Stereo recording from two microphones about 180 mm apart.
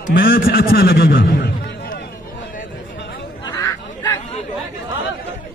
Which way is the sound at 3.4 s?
20° left (ahead or behind).